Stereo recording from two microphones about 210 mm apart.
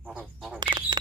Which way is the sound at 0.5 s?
20° right (ahead or behind).